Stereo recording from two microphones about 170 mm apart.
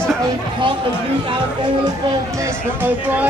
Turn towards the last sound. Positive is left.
turn(degrees=-10)  # may be behind; listen again after turning